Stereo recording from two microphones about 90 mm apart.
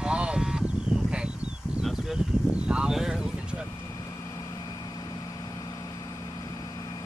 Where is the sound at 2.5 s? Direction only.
10° right (ahead or behind).